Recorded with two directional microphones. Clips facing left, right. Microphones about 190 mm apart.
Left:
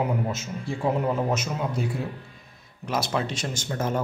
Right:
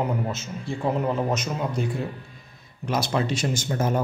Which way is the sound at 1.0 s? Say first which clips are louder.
Even; 5° left (ahead or behind).